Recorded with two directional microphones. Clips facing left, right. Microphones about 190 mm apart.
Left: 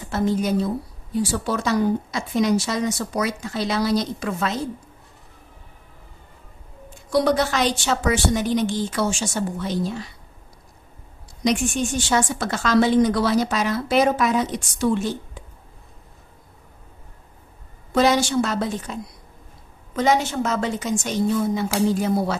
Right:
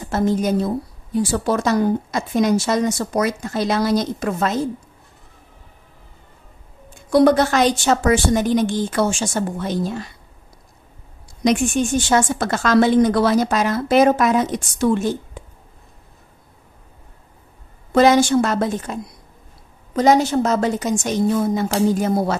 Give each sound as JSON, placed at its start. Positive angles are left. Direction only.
{"t": 0.1, "sound": "a woman's voice", "side_deg": -45}
{"t": 7.1, "sound": "a woman's voice", "side_deg": -55}
{"t": 12.1, "sound": "a woman's voice", "side_deg": -50}
{"t": 17.9, "sound": "a woman's voice", "side_deg": -50}
{"t": 20.0, "sound": "a woman's voice", "side_deg": -40}